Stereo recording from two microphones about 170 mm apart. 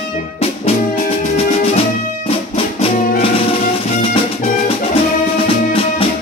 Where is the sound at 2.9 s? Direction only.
35° left (ahead or behind).